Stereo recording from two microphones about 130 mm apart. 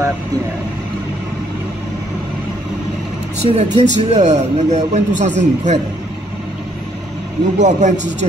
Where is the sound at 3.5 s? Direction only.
55° right (ahead or behind).